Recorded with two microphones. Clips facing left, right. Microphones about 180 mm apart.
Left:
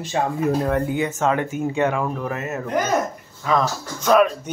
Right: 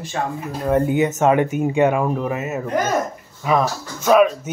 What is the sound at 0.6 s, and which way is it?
Speech, 20° right (ahead or behind).